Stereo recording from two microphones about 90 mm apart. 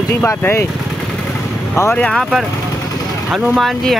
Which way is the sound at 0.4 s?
25° left (ahead or behind).